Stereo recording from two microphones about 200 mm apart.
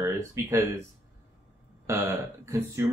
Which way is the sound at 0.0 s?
15° right (ahead or behind).